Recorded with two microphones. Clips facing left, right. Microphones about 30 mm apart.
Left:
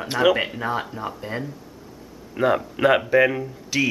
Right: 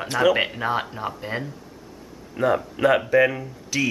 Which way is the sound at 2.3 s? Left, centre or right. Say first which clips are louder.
Left 1 dB; centre.